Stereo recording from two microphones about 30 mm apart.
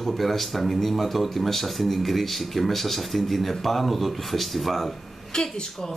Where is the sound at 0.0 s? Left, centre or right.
Centre.